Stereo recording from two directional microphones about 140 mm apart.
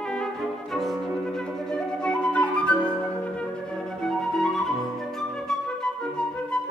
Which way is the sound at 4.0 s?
5° left (ahead or behind).